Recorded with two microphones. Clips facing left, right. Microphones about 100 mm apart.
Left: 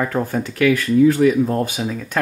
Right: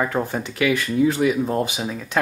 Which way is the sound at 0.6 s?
15° right (ahead or behind).